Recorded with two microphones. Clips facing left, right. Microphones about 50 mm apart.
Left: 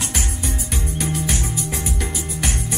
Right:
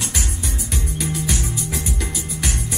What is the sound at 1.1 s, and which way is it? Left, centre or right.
Music, left.